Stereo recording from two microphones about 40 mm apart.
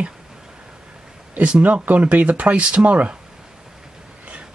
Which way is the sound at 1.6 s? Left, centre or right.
Right.